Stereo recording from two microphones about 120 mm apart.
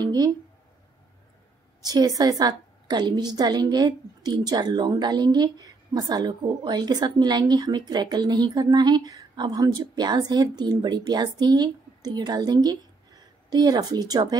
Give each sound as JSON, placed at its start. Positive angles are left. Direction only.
{"t": 0.0, "sound": "speech", "side_deg": -35}
{"t": 1.9, "sound": "a woman's voice", "side_deg": -35}